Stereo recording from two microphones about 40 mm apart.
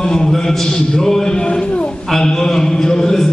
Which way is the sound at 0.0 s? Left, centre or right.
Centre.